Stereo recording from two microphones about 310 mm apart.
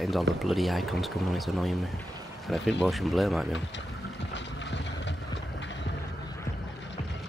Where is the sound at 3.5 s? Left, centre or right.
Left.